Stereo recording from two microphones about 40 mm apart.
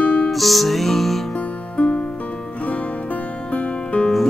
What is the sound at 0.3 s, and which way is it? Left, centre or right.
Music, centre.